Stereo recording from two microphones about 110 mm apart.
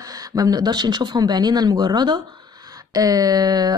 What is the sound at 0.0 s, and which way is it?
A woman's voice, 35° right (ahead or behind).